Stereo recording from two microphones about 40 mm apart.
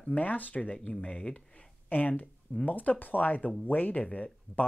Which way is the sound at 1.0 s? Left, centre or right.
Left.